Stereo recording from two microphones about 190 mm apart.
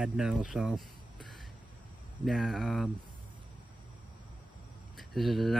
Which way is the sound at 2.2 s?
Centre (ahead or behind).